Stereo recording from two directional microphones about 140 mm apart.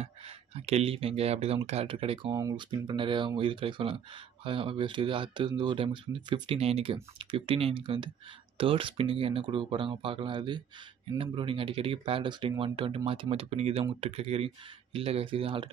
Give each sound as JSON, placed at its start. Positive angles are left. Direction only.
{"t": 0.6, "sound": "speech", "side_deg": -50}